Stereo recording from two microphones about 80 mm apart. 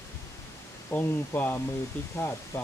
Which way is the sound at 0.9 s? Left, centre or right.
Left.